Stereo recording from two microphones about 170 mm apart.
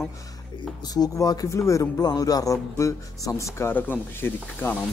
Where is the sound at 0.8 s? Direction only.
20° left (ahead or behind).